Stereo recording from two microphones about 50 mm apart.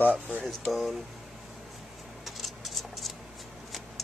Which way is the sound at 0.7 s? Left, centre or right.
Centre.